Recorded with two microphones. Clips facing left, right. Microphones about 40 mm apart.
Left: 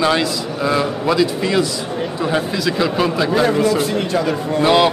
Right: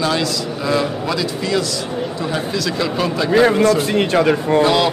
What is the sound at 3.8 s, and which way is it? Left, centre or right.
Speech, right.